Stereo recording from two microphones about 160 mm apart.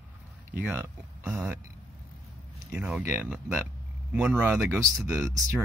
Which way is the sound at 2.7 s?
10° right (ahead or behind).